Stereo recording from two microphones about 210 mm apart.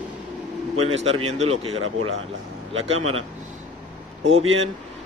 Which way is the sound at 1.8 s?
75° right (ahead or behind).